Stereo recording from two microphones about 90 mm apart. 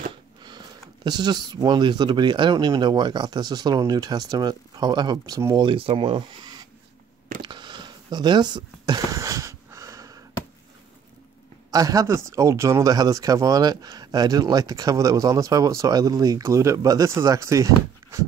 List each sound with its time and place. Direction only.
0.4 s speech: 55° right (ahead or behind)
2.5 s speech: 45° right (ahead or behind)
5.6 s speech: 80° right
6.4 s writing: 50° right (ahead or behind)
7.4 s a sound: 55° right (ahead or behind); by 10.2 s 40° right (ahead or behind)
11.7 s speech: 40° right (ahead or behind)